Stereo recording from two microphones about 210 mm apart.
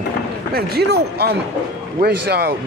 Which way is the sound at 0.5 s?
45° right (ahead or behind).